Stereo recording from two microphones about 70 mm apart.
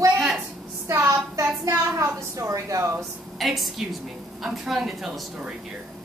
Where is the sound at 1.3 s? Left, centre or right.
Right.